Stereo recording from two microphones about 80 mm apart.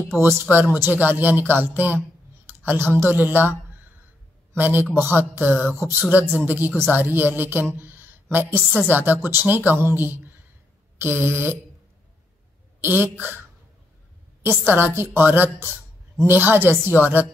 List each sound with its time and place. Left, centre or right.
0.2 s speech: right
4.6 s speech: right
7.7 s a sound: right
8.8 s speech: right
12.8 s speech: right
14.7 s speech: right